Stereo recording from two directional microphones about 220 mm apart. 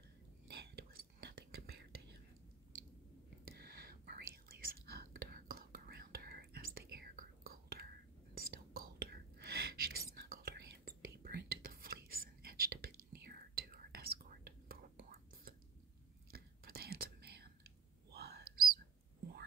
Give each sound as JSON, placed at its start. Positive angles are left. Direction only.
{"t": 0.5, "sound": "whispering", "side_deg": -45}
{"t": 3.5, "sound": "whispering", "side_deg": -45}